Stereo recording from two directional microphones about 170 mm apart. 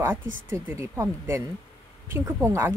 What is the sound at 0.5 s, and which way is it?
Speech, 15° right (ahead or behind).